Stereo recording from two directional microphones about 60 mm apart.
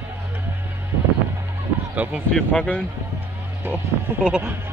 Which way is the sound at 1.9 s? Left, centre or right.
Right.